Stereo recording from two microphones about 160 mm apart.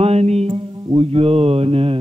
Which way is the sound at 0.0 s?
40° right (ahead or behind).